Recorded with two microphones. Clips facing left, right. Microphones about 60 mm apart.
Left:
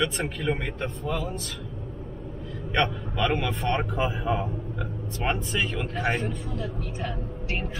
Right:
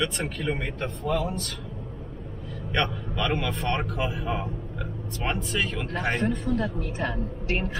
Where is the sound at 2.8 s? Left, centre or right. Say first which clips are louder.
Left 2 dB; centre.